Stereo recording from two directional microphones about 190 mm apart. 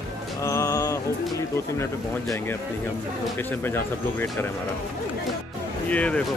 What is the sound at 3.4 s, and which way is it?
Speech, 10° left (ahead or behind).